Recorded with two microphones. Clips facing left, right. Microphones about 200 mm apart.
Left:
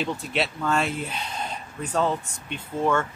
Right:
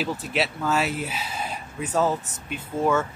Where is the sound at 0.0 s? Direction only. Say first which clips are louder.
Right 1 dB; 5° right (ahead or behind).